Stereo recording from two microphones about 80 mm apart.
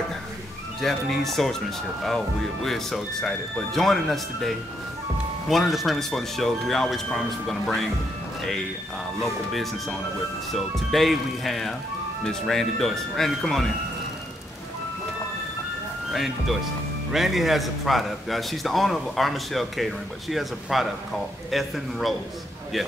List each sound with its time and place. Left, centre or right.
0.7 s a man's voice: centre
9.2 s a man's voice: centre
16.1 s a man's voice: centre